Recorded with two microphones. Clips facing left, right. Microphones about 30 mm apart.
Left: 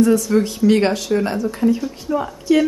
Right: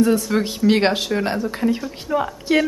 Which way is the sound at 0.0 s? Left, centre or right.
Right.